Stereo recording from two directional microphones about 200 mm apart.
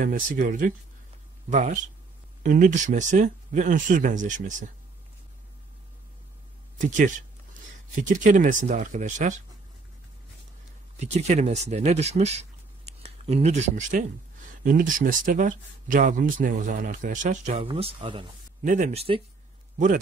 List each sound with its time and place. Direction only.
0.0 s speech: 40° right (ahead or behind)
6.8 s speech: 40° right (ahead or behind)
11.0 s speech: 35° right (ahead or behind)
18.6 s speech: 35° right (ahead or behind)